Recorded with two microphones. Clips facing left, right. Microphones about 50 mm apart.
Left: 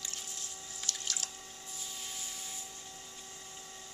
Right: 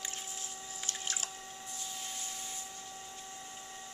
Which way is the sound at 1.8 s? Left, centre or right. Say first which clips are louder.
Right 1 dB; centre.